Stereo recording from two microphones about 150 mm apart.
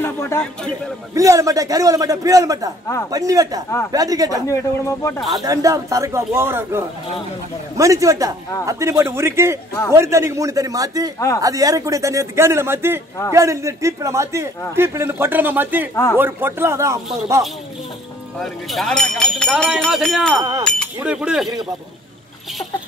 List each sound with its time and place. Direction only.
0.0 s speech: 15° left (ahead or behind)
1.1 s speech: 20° right (ahead or behind)
4.5 s speech: 20° left (ahead or behind)
5.3 s speech: 25° right (ahead or behind)
18.4 s speech: centre (ahead or behind)